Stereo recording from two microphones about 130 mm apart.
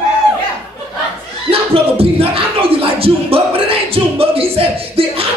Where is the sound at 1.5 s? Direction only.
45° right (ahead or behind).